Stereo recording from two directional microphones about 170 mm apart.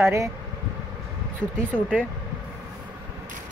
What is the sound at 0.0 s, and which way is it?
Speech, 15° right (ahead or behind).